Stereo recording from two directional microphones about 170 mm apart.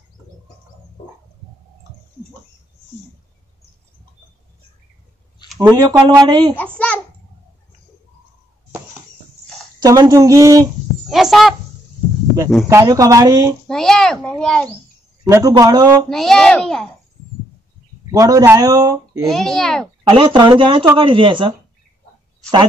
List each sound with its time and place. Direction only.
5.6 s speech: 20° right (ahead or behind)
6.5 s a sound: 10° left (ahead or behind)
9.8 s speech: 20° right (ahead or behind)
11.1 s a child's voice: centre (ahead or behind)
12.6 s speech: 20° right (ahead or behind)
13.7 s a child's voice: 5° left (ahead or behind)
15.2 s speech: 20° right (ahead or behind)
16.1 s a child's voice: 5° left (ahead or behind)
18.1 s speech: 20° right (ahead or behind)
19.2 s a child's voice: centre (ahead or behind)
20.1 s speech: 30° right (ahead or behind)